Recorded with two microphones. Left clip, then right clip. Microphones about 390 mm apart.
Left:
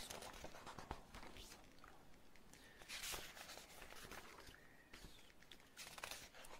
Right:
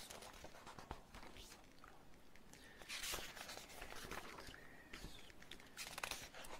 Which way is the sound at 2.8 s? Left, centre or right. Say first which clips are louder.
Right 3 dB; right.